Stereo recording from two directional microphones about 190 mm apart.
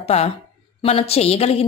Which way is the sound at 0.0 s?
35° left (ahead or behind).